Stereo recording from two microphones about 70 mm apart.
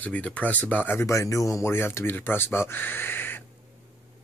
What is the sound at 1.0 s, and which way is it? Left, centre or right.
Speech, left.